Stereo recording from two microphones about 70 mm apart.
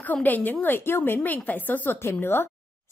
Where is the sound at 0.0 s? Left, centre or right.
Left.